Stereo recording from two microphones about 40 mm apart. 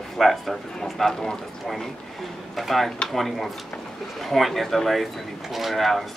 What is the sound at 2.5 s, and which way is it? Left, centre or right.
Speech, centre.